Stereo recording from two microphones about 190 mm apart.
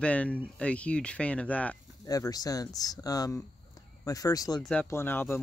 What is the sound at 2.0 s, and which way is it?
Speech, 20° left (ahead or behind).